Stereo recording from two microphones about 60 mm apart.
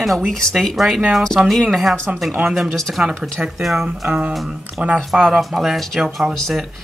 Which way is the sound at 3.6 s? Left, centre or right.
Centre.